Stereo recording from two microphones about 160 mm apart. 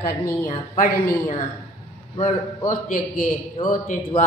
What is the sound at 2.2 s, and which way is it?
Speech, 55° left (ahead or behind).